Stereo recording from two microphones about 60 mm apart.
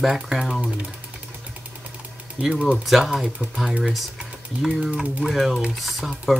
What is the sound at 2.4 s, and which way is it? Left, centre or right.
Speech, centre.